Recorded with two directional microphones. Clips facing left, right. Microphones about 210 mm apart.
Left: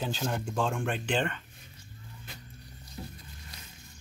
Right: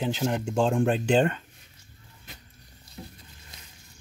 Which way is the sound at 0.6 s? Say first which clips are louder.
Right 9 dB; 35° right (ahead or behind).